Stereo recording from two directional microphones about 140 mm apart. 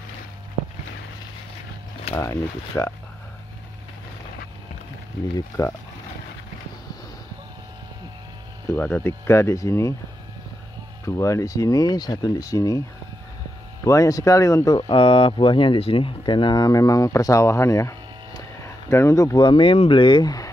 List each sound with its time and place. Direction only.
2.1 s speech: 20° left (ahead or behind)
8.6 s speech: 15° left (ahead or behind)
11.1 s speech: 20° left (ahead or behind)
13.8 s speech: 25° left (ahead or behind)
15.0 s speech: 40° left (ahead or behind)